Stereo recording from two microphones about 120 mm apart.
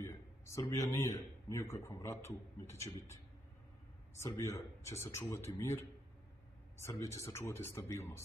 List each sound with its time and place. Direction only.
0.6 s speech: 25° left (ahead or behind)
4.2 s speech: 25° left (ahead or behind)
6.8 s speech: 25° left (ahead or behind)